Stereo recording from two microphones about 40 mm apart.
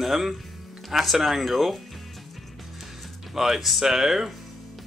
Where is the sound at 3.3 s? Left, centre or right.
Centre.